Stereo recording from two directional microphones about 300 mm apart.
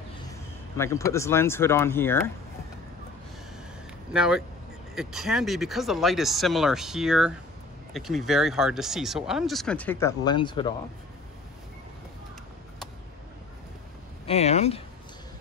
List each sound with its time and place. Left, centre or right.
0.7 s speech: centre
4.1 s speech: centre
14.2 s speech: left